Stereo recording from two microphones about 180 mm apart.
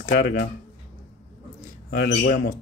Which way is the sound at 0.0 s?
50° left (ahead or behind).